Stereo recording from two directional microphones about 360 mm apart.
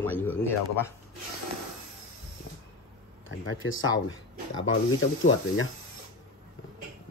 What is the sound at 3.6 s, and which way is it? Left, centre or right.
Speech, left.